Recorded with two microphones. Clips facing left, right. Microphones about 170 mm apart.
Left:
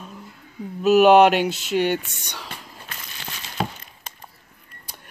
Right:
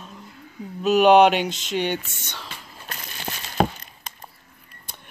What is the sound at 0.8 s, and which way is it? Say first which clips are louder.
Speech: left 1 dB; 5° left (ahead or behind).